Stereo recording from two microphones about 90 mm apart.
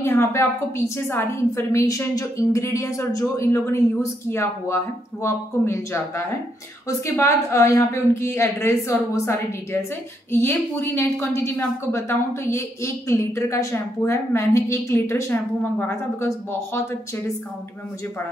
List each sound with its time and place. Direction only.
0.0 s a woman's voice: 30° left (ahead or behind)